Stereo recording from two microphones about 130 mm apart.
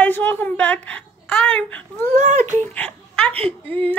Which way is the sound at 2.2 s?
70° right (ahead or behind).